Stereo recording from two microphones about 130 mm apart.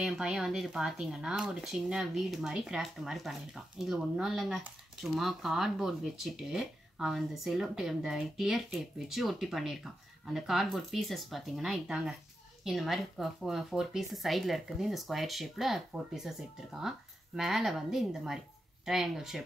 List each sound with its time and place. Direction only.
0.0 s speech: 5° right (ahead or behind)
17.4 s speech: centre (ahead or behind)